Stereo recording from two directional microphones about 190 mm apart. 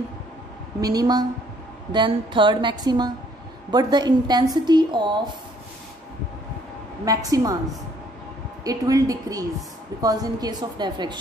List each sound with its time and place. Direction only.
0.7 s a woman's voice: 20° right (ahead or behind)
7.1 s a woman's voice: 20° right (ahead or behind)
8.6 s a woman's voice: 20° right (ahead or behind)